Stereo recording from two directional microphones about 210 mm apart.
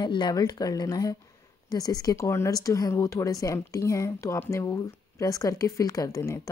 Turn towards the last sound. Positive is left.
turn(degrees=15)  # may be behind; listen again after turning